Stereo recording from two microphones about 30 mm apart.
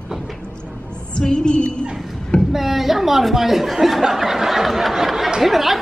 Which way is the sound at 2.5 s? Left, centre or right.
Centre.